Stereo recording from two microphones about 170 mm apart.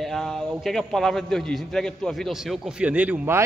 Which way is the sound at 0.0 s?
Centre (ahead or behind).